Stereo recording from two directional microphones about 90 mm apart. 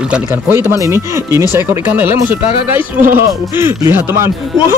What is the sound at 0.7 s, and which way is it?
Speech, 35° right (ahead or behind).